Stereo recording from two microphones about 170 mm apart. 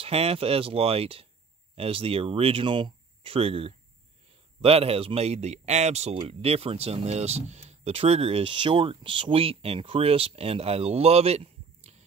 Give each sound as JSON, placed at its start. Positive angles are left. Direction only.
{"t": 0.0, "sound": "speech", "side_deg": -35}